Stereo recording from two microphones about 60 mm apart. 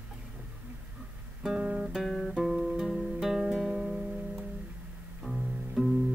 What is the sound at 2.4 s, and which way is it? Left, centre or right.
Music, centre.